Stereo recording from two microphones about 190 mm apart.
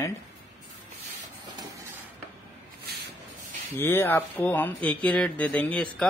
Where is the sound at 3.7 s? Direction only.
10° left (ahead or behind).